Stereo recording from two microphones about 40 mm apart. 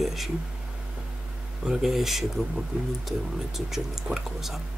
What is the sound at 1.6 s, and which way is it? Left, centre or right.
Speech, centre.